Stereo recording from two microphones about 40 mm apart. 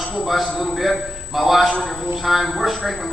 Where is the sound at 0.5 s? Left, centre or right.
Centre.